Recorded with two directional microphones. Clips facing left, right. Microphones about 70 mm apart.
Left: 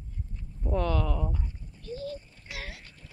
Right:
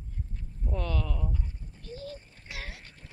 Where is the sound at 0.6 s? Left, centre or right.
Left.